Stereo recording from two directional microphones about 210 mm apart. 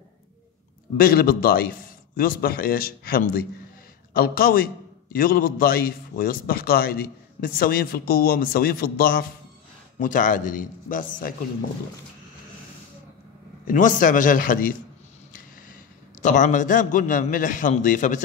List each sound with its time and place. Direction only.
0.9 s a man's voice: 45° left (ahead or behind)
13.7 s a man's voice: 40° left (ahead or behind)